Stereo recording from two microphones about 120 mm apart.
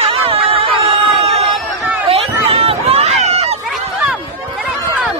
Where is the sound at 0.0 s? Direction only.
50° right (ahead or behind).